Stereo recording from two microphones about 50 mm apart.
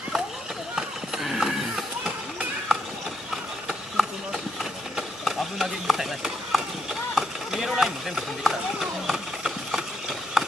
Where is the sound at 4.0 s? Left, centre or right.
Centre.